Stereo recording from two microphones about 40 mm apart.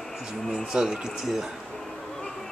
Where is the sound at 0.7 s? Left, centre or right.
Centre.